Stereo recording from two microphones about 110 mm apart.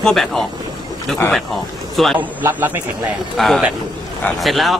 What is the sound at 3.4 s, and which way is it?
Speech, centre (ahead or behind).